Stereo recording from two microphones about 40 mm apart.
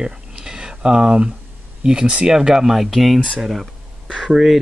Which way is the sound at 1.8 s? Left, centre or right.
Right.